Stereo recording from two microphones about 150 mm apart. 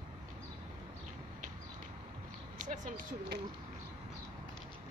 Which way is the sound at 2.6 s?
60° right (ahead or behind).